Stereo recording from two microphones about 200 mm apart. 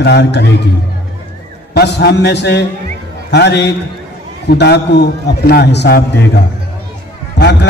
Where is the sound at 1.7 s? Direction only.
55° left (ahead or behind).